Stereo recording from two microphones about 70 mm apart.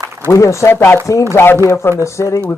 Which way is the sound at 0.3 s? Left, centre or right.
Left.